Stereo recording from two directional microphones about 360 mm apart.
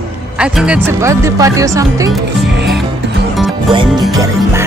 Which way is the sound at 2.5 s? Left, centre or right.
Right.